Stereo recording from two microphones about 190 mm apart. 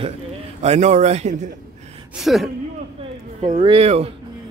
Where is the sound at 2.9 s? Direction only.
40° right (ahead or behind).